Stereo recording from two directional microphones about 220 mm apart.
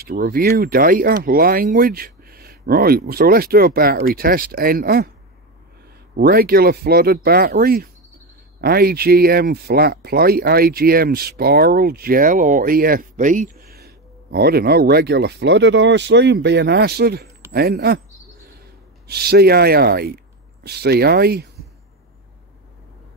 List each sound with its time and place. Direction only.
0.0 s speech: 45° right (ahead or behind)
6.1 s speech: 45° right (ahead or behind)
19.0 s speech: 45° right (ahead or behind)